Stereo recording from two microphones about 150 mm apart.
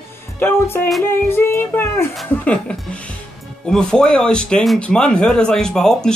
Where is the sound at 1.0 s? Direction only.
15° left (ahead or behind).